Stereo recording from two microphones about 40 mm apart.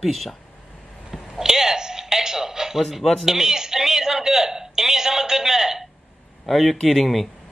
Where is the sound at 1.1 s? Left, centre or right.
Centre.